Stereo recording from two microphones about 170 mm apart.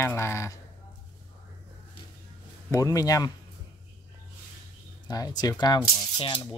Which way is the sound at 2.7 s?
20° left (ahead or behind).